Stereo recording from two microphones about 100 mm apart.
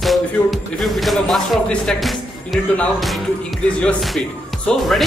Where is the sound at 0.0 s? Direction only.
Centre (ahead or behind).